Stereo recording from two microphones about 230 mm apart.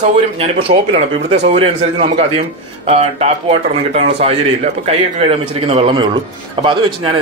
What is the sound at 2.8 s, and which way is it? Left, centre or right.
A man's voice, right.